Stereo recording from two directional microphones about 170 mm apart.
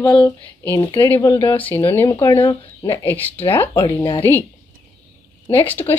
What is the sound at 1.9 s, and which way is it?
Speech, 15° left (ahead or behind).